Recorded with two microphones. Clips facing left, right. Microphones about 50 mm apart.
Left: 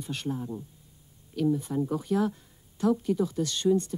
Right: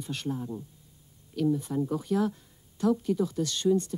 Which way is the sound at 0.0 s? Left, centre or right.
Centre.